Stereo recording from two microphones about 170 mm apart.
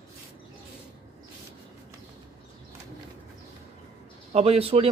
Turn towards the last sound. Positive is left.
turn(degrees=-35)  # may be behind; listen again after turning